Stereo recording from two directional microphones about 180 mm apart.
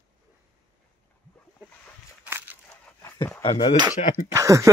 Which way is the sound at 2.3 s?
10° right (ahead or behind).